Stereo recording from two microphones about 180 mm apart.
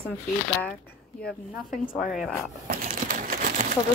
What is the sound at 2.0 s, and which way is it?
Speech, centre (ahead or behind).